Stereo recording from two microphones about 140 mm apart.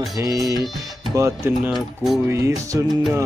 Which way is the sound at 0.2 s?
25° right (ahead or behind).